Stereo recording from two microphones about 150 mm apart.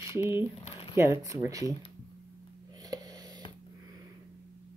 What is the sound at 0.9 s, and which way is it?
Speech, 20° right (ahead or behind).